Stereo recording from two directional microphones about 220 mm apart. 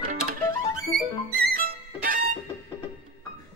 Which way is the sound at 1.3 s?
45° right (ahead or behind).